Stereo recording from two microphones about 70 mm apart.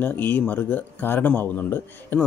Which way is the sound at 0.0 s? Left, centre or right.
Left.